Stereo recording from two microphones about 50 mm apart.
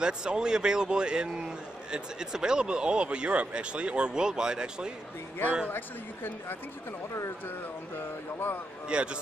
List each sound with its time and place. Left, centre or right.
0.0 s a man's voice: centre
5.7 s speech: left
8.8 s speech: centre